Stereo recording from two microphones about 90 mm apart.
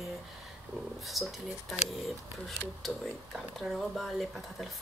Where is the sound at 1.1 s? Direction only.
Centre (ahead or behind).